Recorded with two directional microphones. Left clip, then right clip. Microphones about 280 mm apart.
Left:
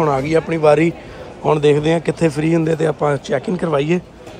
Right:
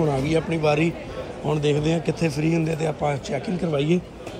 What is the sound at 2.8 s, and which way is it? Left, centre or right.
Speech, left.